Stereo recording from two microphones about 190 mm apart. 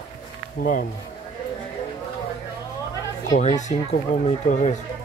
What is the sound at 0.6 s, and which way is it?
Speech, 45° left (ahead or behind).